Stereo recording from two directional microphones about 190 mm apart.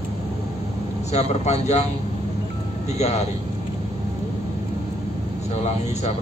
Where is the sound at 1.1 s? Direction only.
35° left (ahead or behind).